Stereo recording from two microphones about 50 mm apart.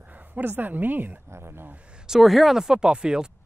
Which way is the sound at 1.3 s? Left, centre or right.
Right.